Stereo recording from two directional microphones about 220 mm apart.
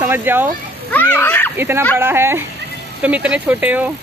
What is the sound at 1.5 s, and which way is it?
Speech, 10° right (ahead or behind).